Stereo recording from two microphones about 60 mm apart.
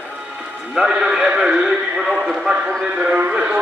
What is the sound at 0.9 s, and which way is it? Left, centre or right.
A man's voice, centre.